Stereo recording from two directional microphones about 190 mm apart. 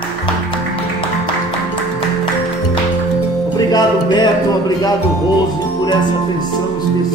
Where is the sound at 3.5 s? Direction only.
20° left (ahead or behind).